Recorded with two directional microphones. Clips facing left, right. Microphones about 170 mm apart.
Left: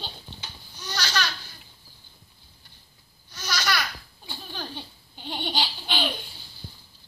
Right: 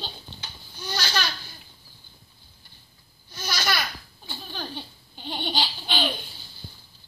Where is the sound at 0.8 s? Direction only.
25° right (ahead or behind).